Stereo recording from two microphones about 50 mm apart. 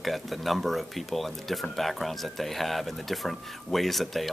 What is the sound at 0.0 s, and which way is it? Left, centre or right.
Speech, centre.